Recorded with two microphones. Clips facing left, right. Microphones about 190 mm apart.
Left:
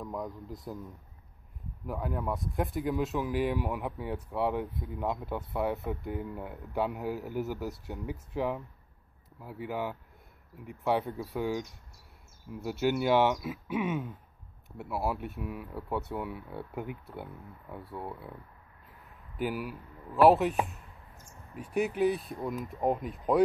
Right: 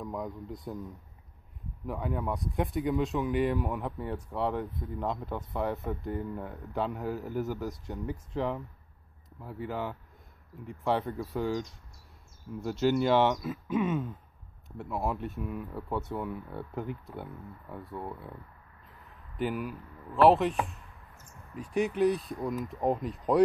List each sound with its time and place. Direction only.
0.0 s speech: centre (ahead or behind)
1.9 s a man's voice: centre (ahead or behind)
12.8 s a man's voice: 10° left (ahead or behind)
19.3 s speech: 5° left (ahead or behind)
21.7 s speech: 5° left (ahead or behind)